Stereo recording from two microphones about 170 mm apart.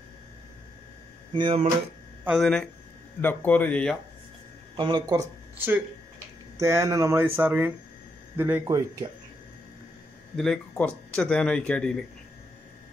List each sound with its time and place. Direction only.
1.3 s speech: 30° right (ahead or behind)
2.2 s speech: centre (ahead or behind)
4.7 s speech: 25° right (ahead or behind)
6.6 s speech: 15° right (ahead or behind)
10.3 s speech: 5° left (ahead or behind)